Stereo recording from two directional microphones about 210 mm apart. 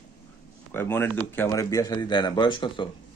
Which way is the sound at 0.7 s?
10° left (ahead or behind).